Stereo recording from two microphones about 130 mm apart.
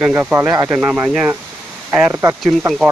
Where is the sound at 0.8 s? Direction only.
10° right (ahead or behind).